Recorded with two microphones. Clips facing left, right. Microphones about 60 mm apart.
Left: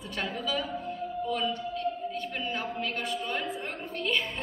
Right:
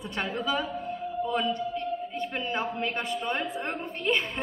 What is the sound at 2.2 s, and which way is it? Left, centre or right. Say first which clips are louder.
A woman's voice: right 3 dB; centre.